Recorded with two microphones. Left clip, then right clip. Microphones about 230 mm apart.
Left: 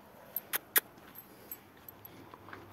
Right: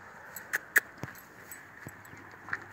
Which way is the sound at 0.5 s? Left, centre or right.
Left.